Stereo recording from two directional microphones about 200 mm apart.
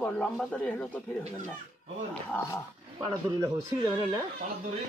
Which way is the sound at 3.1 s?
15° right (ahead or behind).